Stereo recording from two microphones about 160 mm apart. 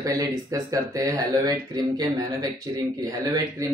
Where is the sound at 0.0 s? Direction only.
20° right (ahead or behind).